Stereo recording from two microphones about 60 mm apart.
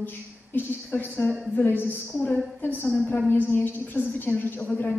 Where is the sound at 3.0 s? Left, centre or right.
Left.